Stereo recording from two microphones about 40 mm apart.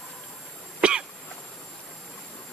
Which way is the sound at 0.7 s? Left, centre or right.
Right.